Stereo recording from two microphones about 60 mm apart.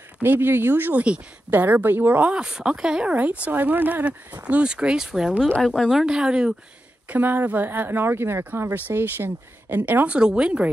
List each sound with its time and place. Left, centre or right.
0.2 s speech: right
0.9 s speech: centre
1.5 s speech: right
2.4 s speech: centre
7.1 s speech: right
8.6 s speech: right
10.1 s speech: centre